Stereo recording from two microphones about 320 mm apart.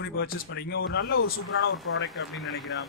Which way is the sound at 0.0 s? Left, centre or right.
Left.